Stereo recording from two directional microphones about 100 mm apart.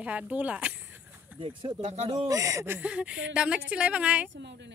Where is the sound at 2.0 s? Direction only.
35° right (ahead or behind).